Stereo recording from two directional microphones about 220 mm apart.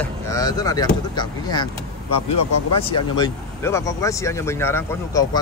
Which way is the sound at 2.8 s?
20° left (ahead or behind).